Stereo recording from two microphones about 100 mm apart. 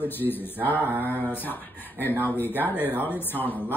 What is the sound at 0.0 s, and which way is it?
A man's voice, 20° left (ahead or behind).